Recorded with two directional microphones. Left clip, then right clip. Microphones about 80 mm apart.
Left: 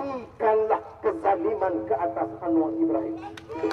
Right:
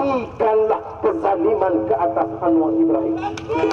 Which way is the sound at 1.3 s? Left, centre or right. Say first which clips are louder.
Right 6 dB; right.